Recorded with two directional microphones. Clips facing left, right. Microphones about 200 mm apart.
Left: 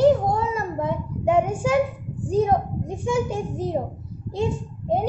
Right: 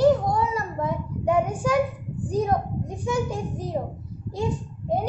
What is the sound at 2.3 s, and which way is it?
A child's voice, 25° left (ahead or behind).